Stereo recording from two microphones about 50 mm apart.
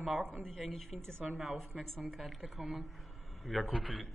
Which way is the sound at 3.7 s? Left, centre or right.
Right.